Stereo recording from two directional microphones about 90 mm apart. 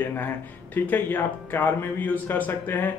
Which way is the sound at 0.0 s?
20° left (ahead or behind).